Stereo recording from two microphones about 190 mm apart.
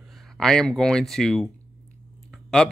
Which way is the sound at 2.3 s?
Centre (ahead or behind).